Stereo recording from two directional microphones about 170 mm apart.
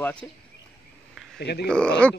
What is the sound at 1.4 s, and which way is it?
Speech, 75° left (ahead or behind).